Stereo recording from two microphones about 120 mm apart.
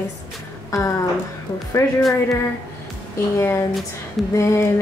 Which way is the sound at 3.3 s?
20° left (ahead or behind).